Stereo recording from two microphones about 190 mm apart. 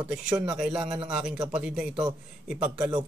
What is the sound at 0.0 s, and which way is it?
A man's voice, 5° right (ahead or behind).